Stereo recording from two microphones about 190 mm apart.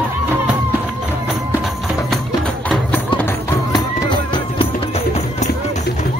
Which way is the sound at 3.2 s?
20° left (ahead or behind).